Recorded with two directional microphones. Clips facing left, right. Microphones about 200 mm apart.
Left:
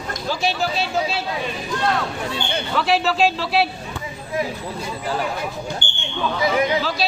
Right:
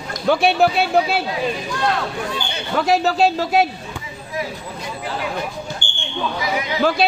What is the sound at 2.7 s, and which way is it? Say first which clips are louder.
Speech: right 3 dB; 45° right (ahead or behind).